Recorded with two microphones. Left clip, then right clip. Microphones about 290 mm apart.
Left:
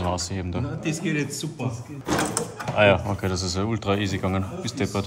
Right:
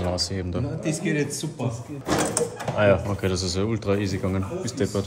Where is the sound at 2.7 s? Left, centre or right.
Centre.